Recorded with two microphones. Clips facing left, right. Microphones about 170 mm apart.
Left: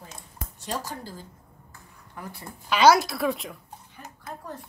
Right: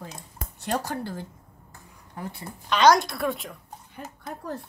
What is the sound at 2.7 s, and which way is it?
Speech, 5° left (ahead or behind).